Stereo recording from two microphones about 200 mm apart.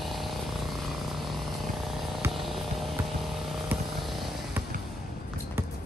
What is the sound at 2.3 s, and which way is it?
Vehicle, centre (ahead or behind).